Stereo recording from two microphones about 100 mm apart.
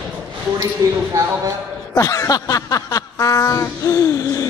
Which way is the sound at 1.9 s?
35° left (ahead or behind).